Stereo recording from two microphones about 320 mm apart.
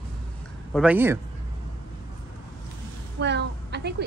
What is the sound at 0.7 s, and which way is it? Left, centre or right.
Speech, centre.